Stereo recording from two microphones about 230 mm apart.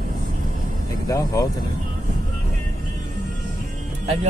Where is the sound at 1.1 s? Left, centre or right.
Centre.